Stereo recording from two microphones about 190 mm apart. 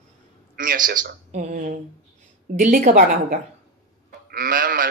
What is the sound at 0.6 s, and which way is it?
A man's voice, 45° right (ahead or behind).